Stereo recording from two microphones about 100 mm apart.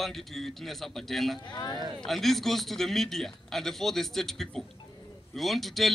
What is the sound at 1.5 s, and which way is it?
Speech, 40° left (ahead or behind).